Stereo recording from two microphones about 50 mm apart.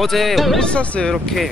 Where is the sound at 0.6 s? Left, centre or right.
Left.